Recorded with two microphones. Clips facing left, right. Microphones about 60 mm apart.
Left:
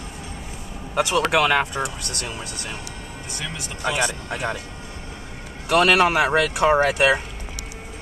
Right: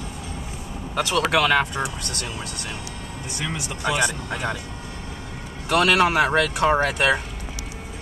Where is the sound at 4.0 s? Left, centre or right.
Left.